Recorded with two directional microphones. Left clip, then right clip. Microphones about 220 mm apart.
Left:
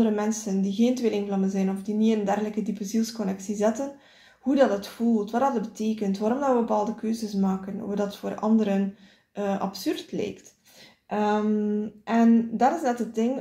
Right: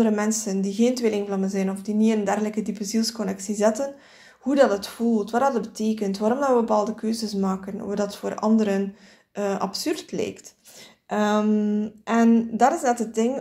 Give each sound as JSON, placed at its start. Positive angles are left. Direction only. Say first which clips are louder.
{"t": 0.0, "sound": "speech", "louder": "right 3 dB", "side_deg": -30}